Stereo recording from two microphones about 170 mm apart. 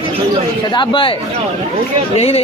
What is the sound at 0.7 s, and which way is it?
Speech, 25° left (ahead or behind).